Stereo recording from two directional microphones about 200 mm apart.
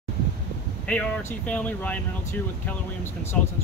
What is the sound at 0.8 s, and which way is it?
Speech, 5° left (ahead or behind).